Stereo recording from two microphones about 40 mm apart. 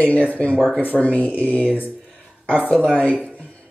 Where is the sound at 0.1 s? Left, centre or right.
Left.